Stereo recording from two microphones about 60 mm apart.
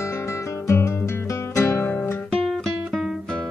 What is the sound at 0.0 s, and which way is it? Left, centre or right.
Music, left.